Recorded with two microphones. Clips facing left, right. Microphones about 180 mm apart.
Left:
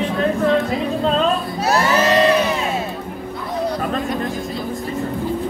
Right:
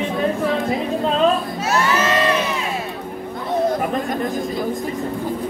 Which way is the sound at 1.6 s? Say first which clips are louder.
Left 4 dB; 35° left (ahead or behind).